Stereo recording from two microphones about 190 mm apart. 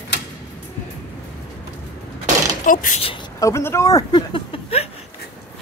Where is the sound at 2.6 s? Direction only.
45° left (ahead or behind).